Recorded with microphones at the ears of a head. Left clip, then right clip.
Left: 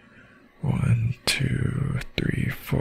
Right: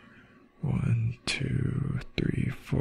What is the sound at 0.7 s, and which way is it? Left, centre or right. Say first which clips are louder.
Whispering: left 5 dB; left.